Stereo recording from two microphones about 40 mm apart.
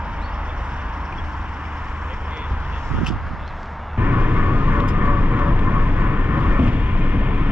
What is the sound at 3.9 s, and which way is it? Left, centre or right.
Vehicle, right.